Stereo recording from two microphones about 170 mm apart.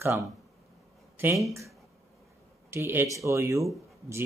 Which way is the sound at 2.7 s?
15° right (ahead or behind).